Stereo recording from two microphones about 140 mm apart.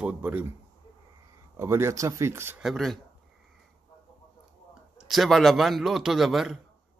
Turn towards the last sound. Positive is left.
turn(degrees=0)  # may be behind; listen again after turning